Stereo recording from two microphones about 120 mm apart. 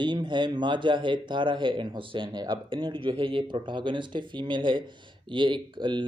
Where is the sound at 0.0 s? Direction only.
40° right (ahead or behind).